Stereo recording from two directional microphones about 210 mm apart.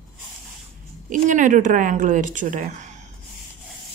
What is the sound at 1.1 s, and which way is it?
Speech, 35° right (ahead or behind).